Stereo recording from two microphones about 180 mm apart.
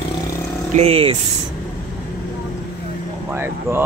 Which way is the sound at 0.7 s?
30° right (ahead or behind).